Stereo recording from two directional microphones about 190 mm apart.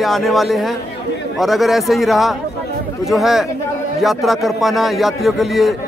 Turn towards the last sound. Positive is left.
turn(degrees=0)  # may be behind; listen again after turning